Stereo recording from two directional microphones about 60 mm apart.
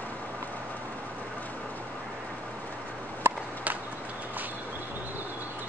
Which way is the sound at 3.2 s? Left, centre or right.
Right.